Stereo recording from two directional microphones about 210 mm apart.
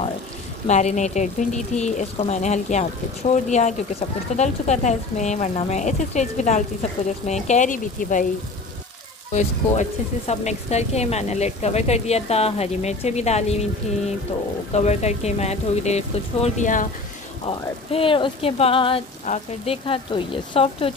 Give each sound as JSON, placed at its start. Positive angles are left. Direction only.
{"t": 0.7, "sound": "a woman's voice", "side_deg": 35}
{"t": 9.3, "sound": "a woman's voice", "side_deg": 35}
{"t": 17.5, "sound": "speech", "side_deg": 25}